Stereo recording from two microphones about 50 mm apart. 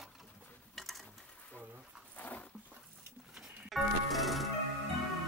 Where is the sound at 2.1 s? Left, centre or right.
Left.